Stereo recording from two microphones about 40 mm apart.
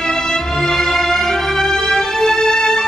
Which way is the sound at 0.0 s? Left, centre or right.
Centre.